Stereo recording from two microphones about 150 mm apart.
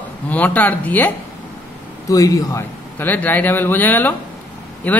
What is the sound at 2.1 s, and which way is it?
Speech, 20° left (ahead or behind).